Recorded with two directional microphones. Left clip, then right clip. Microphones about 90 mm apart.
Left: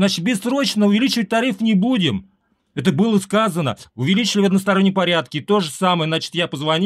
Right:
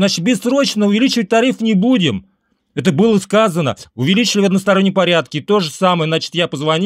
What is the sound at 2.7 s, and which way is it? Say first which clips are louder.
Speech: right 5 dB; 40° right (ahead or behind).